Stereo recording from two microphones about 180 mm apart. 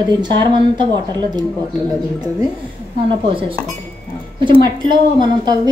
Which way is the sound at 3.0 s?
30° right (ahead or behind).